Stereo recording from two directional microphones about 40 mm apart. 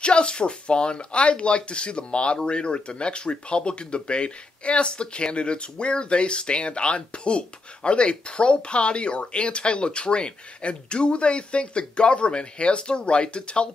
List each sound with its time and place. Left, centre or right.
0.0 s speech: left